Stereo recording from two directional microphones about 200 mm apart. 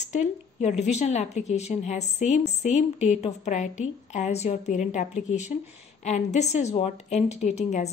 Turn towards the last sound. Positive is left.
turn(degrees=35)  # may be behind; listen again after turning